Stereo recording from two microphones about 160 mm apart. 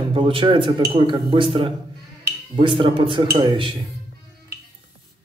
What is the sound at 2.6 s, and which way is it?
Speech, 30° right (ahead or behind).